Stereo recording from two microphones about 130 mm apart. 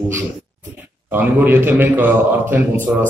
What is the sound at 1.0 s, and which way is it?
A man's voice, 15° right (ahead or behind).